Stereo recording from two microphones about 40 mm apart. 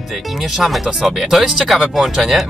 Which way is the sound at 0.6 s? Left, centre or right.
Centre.